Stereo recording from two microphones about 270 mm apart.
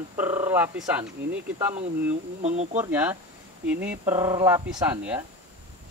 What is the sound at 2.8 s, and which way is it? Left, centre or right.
Speech, centre.